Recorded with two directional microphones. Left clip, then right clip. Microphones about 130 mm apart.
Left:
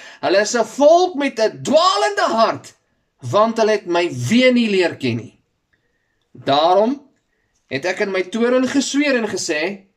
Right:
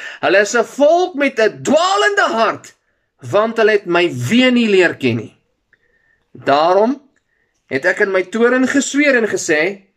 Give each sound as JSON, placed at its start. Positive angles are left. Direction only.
{"t": 0.0, "sound": "speech", "side_deg": 20}
{"t": 6.7, "sound": "speech", "side_deg": 15}